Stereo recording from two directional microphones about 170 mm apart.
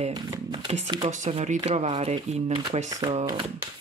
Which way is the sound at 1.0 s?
45° right (ahead or behind).